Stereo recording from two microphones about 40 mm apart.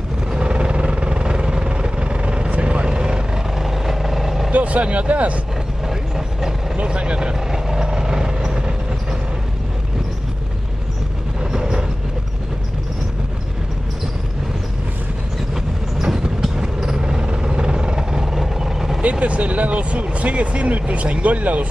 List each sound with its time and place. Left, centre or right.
0.3 s vehicle: right
3.5 s vehicle: centre
4.5 s speech: right
5.9 s vehicle: centre
6.8 s vehicle: right
7.3 s vehicle: centre
11.5 s train: centre
15.5 s vehicle: centre
19.0 s speech: right